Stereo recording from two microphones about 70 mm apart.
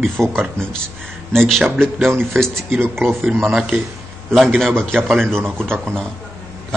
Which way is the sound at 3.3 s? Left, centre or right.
Centre.